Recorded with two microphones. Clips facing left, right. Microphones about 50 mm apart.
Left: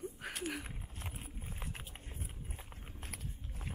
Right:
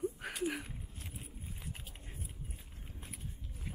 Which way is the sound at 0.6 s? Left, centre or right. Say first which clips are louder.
Left 2 dB; left.